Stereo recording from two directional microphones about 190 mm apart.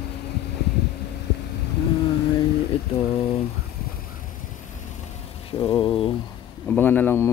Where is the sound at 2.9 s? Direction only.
30° left (ahead or behind).